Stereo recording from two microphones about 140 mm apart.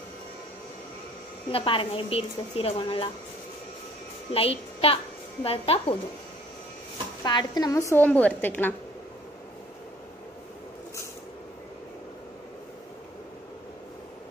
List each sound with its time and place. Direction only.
1.5 s a woman's voice: 40° left (ahead or behind)
4.3 s a child's voice: 45° left (ahead or behind)
7.2 s a woman's voice: 30° left (ahead or behind); by 8.7 s 15° left (ahead or behind)